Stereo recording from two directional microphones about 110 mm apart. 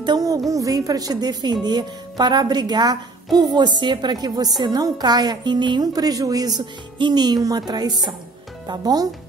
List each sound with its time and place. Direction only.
0.0 s a woman's voice: 35° right (ahead or behind)